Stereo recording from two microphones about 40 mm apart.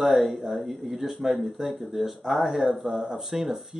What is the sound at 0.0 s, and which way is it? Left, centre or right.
Speech, centre.